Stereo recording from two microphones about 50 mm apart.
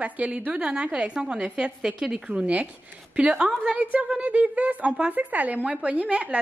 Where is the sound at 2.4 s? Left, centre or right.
Right.